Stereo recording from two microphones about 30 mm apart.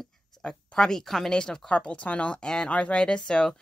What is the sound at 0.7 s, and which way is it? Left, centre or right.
Speech, centre.